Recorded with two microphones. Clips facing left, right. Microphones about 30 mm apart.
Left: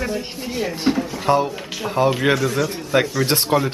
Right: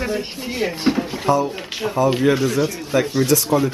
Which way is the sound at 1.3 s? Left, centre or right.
Left.